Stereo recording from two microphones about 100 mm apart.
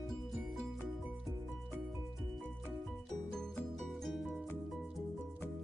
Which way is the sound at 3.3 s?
10° left (ahead or behind).